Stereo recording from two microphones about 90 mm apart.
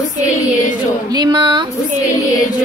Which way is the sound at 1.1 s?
55° right (ahead or behind).